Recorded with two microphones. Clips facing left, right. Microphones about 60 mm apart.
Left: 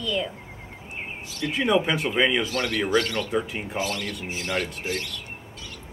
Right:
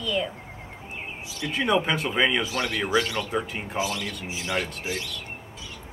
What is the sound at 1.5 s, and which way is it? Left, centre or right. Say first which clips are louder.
Speech: left 1 dB; centre.